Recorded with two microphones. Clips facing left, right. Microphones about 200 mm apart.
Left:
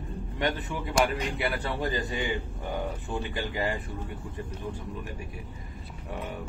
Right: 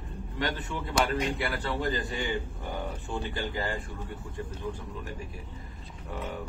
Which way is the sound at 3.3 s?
15° left (ahead or behind).